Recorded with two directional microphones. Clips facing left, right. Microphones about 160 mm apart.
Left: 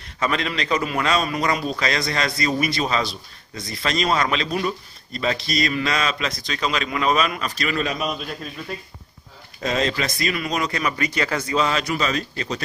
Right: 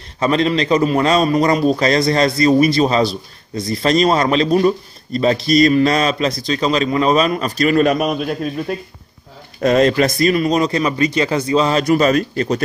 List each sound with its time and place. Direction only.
0.2 s a man's voice: 30° right (ahead or behind); by 12.6 s 50° right (ahead or behind)